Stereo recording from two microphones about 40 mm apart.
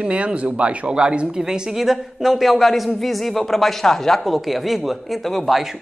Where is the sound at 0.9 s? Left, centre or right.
Right; by 5.1 s centre.